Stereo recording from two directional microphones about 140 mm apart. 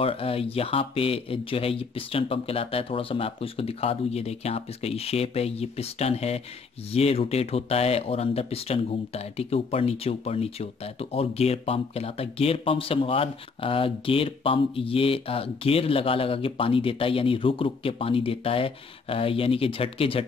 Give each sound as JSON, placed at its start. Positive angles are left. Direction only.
{"t": 0.0, "sound": "speech", "side_deg": 45}